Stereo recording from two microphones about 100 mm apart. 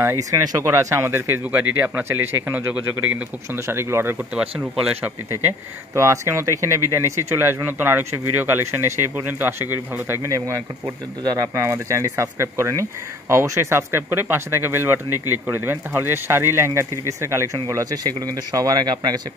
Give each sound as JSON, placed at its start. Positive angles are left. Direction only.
{"t": 0.0, "sound": "speech", "side_deg": -30}
{"t": 3.5, "sound": "speech", "side_deg": -25}
{"t": 4.4, "sound": "speech", "side_deg": -10}
{"t": 5.9, "sound": "speech", "side_deg": -30}